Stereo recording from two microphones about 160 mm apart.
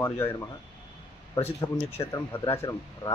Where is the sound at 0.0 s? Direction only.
15° left (ahead or behind).